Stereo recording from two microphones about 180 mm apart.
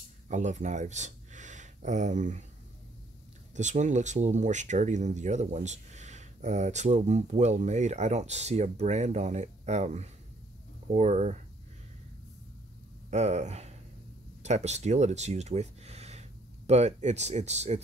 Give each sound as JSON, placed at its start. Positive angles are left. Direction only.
{"t": 0.3, "sound": "speech", "side_deg": -40}
{"t": 3.5, "sound": "speech", "side_deg": -40}
{"t": 13.1, "sound": "speech", "side_deg": -40}